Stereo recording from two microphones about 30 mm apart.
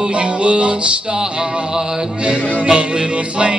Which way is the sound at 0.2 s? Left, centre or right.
Right.